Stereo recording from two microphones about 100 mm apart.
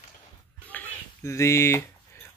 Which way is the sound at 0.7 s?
15° left (ahead or behind).